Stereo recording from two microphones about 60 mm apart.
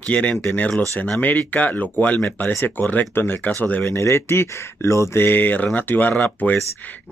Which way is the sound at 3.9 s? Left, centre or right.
Left.